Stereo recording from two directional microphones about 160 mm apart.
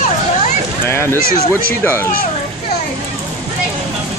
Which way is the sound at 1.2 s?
65° left (ahead or behind).